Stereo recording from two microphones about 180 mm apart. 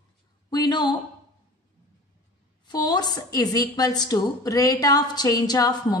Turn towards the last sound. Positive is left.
turn(degrees=20)  # may be behind; listen again after turning